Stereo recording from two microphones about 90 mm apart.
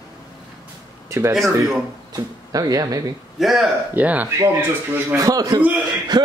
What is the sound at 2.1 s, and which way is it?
Speech, 45° right (ahead or behind).